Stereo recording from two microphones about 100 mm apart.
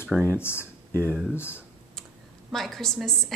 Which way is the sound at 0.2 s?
20° left (ahead or behind).